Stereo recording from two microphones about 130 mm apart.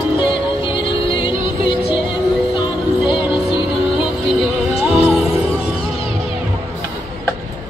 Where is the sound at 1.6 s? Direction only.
40° left (ahead or behind).